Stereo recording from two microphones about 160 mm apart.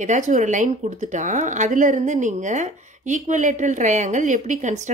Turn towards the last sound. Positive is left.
turn(degrees=-50)  # may be behind; listen again after turning